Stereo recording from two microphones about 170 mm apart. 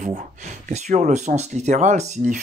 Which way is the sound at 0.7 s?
45° right (ahead or behind).